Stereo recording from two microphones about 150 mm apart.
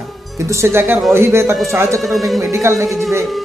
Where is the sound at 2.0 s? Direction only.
Centre (ahead or behind).